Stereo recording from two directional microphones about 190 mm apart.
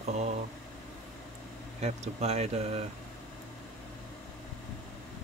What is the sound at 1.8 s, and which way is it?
Speech, 35° right (ahead or behind).